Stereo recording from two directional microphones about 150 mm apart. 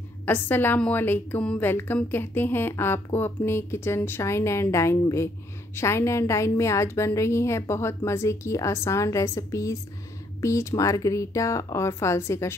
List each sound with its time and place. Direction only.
0.2 s a woman's voice: 15° left (ahead or behind)